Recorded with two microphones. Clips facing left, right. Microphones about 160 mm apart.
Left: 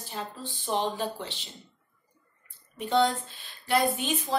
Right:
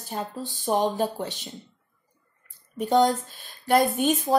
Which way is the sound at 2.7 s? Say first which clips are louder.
Right 4 dB; 40° right (ahead or behind).